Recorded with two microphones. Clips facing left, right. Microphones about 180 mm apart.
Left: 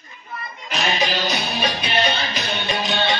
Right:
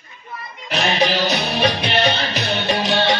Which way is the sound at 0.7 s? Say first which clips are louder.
Right 4 dB; 65° right (ahead or behind).